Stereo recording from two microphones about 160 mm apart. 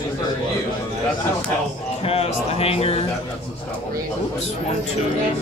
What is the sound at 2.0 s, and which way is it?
A man's voice, 40° left (ahead or behind).